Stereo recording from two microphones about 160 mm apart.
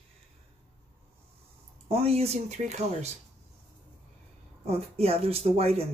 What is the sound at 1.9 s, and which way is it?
Speech, 40° right (ahead or behind).